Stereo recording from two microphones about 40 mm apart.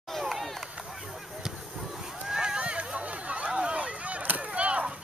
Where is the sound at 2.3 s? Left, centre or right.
Right.